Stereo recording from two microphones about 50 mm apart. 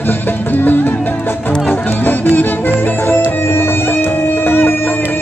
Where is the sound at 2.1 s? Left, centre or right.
Left.